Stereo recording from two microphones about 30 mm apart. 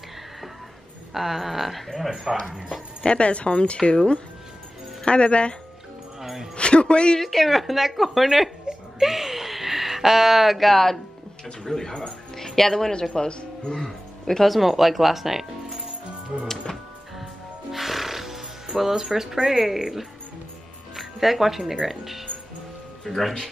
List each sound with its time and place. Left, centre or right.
1.1 s speech: centre
3.1 s speech: left
6.2 s speech: centre
6.5 s speech: left
7.2 s speech: centre
8.7 s a sound: right
9.0 s a sound: centre
10.7 s speech: centre
13.1 s speech: left
14.4 s speech: centre
16.7 s music: centre
17.6 s music: centre
19.8 s speech: centre